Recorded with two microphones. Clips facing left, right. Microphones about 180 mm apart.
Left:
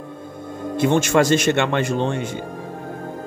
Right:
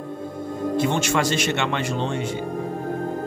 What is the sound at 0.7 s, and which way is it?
A man's voice, 55° left (ahead or behind).